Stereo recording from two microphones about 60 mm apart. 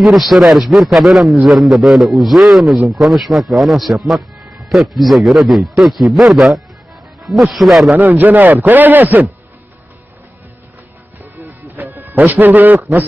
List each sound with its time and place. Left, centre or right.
0.0 s a man's voice: centre
7.9 s a man's voice: right
11.4 s music: right